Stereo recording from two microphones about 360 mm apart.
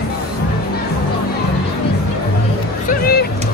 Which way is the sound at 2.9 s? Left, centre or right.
Left.